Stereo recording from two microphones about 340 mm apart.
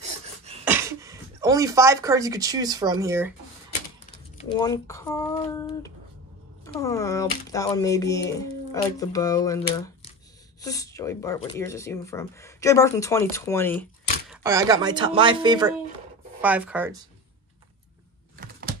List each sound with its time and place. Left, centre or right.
0.0 s a sound: centre
0.7 s speech: centre
4.4 s speech: centre
14.3 s speech: centre